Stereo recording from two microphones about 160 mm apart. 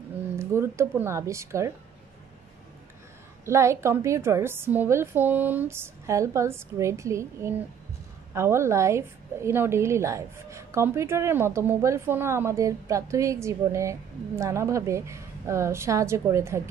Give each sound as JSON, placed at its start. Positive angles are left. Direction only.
{"t": 0.4, "sound": "a woman's voice", "side_deg": -15}
{"t": 3.4, "sound": "a woman's voice", "side_deg": -20}